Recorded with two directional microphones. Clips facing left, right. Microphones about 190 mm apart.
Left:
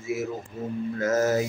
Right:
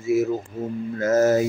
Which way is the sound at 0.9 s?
30° right (ahead or behind).